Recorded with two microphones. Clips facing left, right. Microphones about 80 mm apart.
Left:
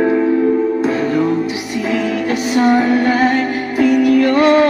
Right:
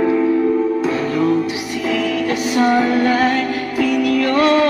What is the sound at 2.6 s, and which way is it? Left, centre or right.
Music, left.